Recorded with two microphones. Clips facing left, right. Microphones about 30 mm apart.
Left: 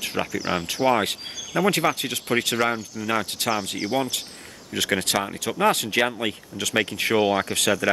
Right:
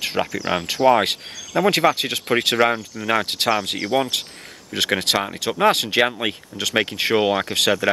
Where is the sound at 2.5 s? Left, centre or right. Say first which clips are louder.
Right 5 dB; right.